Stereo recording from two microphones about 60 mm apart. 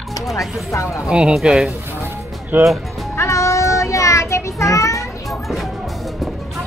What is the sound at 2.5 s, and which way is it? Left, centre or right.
Speech, right.